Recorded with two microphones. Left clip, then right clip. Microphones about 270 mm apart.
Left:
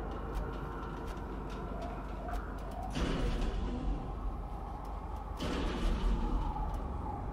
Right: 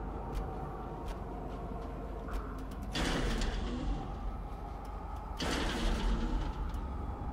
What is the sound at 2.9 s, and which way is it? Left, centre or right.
Music, right.